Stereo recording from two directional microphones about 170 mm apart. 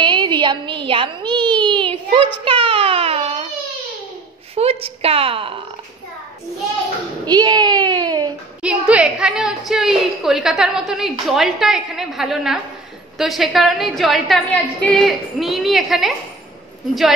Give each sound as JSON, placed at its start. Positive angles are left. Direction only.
{"t": 0.0, "sound": "a sound", "side_deg": -25}
{"t": 0.8, "sound": "a woman's voice", "side_deg": -30}
{"t": 1.6, "sound": "baby cry", "side_deg": -30}
{"t": 4.6, "sound": "a woman's voice", "side_deg": -35}
{"t": 7.2, "sound": "a sound", "side_deg": -25}
{"t": 8.6, "sound": "a woman's voice", "side_deg": -5}